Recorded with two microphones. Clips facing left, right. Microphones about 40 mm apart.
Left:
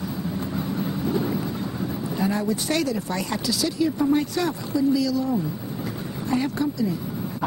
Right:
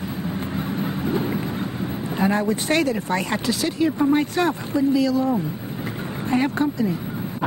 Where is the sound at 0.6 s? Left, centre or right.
Right.